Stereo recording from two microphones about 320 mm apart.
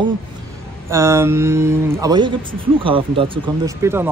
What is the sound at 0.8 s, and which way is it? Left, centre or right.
Speech, centre.